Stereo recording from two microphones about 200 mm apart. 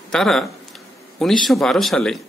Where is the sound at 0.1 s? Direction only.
Centre (ahead or behind).